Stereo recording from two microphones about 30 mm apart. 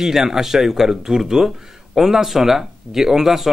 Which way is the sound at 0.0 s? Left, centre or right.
Centre.